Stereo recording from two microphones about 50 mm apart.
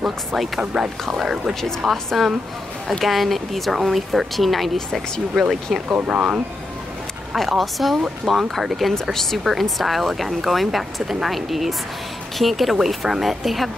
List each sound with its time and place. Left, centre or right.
0.7 s speech: centre
5.4 s speech: centre
6.0 s speech: right
7.3 s speech: centre